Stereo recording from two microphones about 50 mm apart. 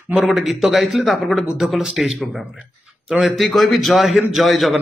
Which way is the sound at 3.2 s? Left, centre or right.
Centre.